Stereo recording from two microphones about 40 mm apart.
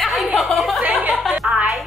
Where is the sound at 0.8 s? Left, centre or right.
Right.